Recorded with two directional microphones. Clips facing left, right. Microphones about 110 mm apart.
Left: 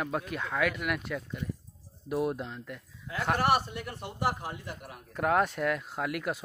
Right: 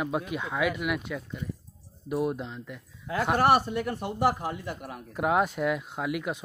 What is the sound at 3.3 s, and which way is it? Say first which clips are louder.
Speech: right 6 dB; 40° right (ahead or behind).